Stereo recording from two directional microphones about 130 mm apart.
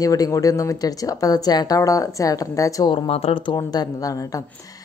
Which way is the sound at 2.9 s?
45° left (ahead or behind).